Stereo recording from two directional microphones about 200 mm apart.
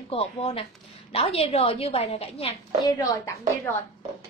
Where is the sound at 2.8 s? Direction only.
15° left (ahead or behind).